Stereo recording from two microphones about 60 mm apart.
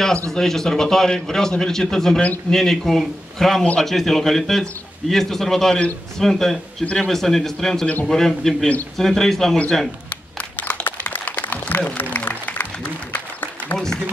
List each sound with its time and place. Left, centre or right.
0.3 s a man's voice: centre
6.8 s a man's voice: centre
7.1 s a man's voice: centre
7.8 s a man's voice: left
8.1 s a man's voice: centre
10.5 s a sound: left
12.0 s applause: left